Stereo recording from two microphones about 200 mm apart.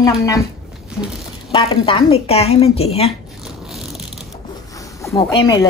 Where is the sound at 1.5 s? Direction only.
25° left (ahead or behind).